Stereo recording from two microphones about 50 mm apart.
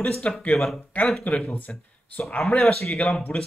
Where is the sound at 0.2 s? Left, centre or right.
Left.